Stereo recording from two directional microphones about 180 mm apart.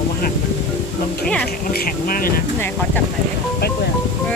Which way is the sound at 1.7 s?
55° left (ahead or behind).